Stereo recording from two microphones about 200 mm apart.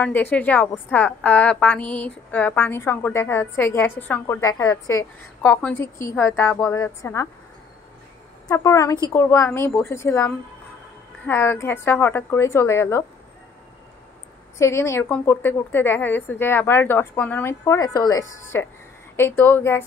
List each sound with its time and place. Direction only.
0.0 s a woman's voice: 10° left (ahead or behind)
8.5 s a woman's voice: 15° left (ahead or behind)
14.6 s a woman's voice: 15° left (ahead or behind)